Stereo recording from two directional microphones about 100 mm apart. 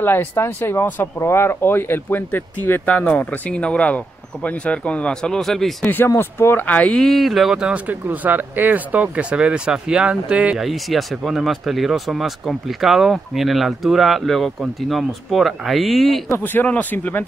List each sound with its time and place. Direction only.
0.0 s speech: 20° left (ahead or behind); by 5.9 s 5° left (ahead or behind)
5.9 s speech: 20° left (ahead or behind); by 16.2 s centre (ahead or behind)
16.4 s speech: 15° left (ahead or behind)